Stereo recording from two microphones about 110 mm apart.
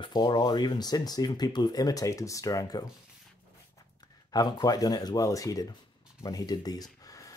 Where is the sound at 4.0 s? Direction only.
35° left (ahead or behind).